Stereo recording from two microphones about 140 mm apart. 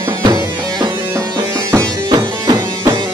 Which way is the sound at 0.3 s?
30° right (ahead or behind).